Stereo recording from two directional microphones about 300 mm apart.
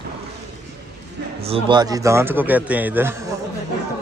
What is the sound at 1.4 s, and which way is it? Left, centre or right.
Speech, centre.